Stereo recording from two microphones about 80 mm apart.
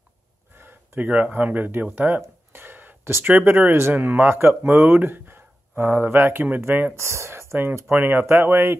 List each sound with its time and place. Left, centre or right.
0.6 s speech: right